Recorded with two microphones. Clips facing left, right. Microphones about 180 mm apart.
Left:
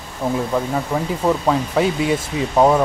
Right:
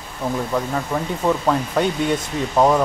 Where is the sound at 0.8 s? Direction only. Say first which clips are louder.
Left 2 dB; 5° left (ahead or behind).